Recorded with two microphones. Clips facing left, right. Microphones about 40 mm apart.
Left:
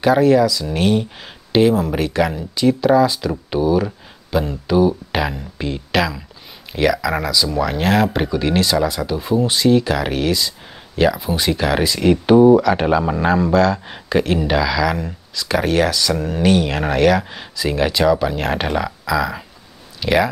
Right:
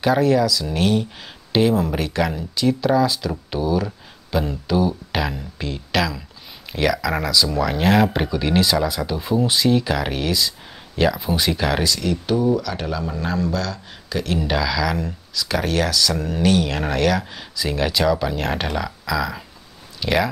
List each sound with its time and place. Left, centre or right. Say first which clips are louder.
0.0 s speech: left 4 dB; centre
12.0 s speech: left 9 dB; left
14.4 s speech: left 4 dB; centre